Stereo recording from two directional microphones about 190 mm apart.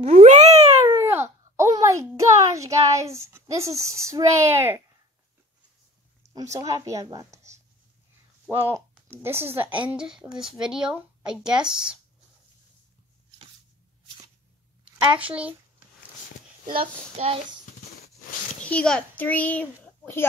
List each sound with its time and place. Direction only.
0.0 s a sound: 35° right (ahead or behind)
0.8 s a sound: 15° right (ahead or behind)
6.5 s a woman's voice: 15° right (ahead or behind)
15.1 s a woman's voice: 5° right (ahead or behind)
16.6 s child singing: 25° right (ahead or behind)
18.6 s a child's voice: 5° left (ahead or behind)